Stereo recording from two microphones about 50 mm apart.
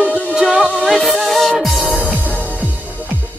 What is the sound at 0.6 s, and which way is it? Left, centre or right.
Music, centre.